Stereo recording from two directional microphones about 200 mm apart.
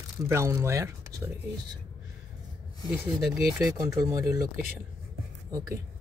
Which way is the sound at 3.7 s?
15° right (ahead or behind).